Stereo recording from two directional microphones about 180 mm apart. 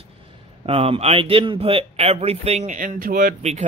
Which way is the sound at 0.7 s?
30° right (ahead or behind).